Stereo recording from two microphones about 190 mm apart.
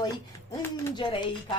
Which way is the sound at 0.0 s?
20° left (ahead or behind).